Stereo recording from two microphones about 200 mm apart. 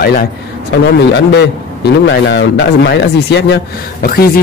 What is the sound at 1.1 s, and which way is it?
A man's voice, 55° left (ahead or behind).